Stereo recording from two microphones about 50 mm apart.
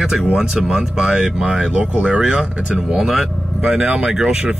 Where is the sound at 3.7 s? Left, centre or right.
Right.